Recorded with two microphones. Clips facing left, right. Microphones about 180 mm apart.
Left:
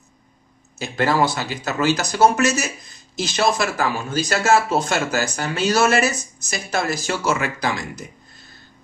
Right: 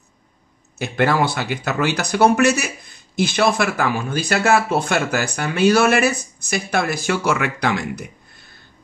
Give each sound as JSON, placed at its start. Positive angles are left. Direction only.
{"t": 0.7, "sound": "speech", "side_deg": -60}